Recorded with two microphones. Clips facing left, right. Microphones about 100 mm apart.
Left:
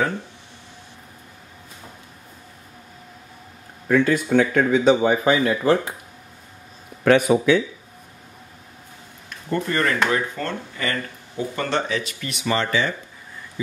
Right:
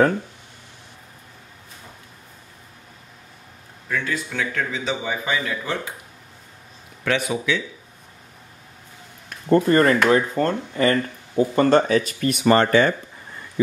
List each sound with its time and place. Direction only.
3.8 s speech: 50° left (ahead or behind)
7.1 s speech: 50° left (ahead or behind)
9.5 s speech: 35° right (ahead or behind)